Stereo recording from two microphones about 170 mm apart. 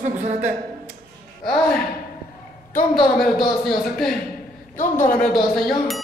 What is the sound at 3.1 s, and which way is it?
A man's voice, centre (ahead or behind).